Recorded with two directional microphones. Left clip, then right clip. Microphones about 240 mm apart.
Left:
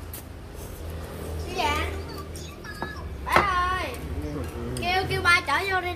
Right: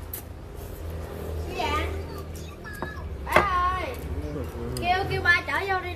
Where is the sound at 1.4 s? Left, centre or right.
Left.